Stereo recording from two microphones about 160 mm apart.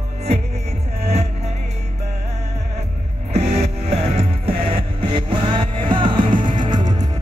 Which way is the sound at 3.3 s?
45° right (ahead or behind).